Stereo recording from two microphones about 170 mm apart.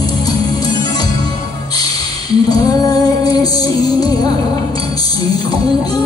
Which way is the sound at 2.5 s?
20° left (ahead or behind).